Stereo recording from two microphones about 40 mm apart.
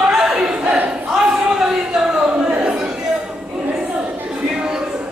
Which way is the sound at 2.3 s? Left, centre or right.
Right.